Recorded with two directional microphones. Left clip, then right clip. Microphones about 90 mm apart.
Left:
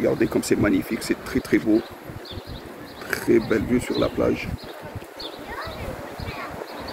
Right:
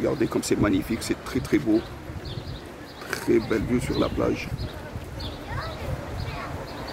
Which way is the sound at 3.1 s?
15° left (ahead or behind).